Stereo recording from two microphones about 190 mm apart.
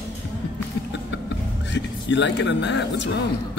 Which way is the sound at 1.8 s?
70° left (ahead or behind).